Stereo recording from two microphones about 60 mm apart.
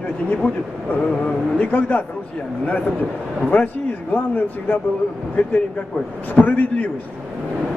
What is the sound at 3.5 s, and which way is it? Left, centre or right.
A man's voice, left.